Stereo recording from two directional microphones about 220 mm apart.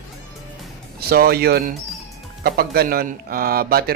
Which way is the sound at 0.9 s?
45° right (ahead or behind).